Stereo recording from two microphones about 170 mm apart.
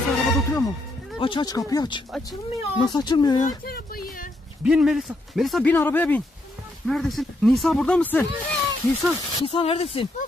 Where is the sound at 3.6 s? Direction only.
60° left (ahead or behind).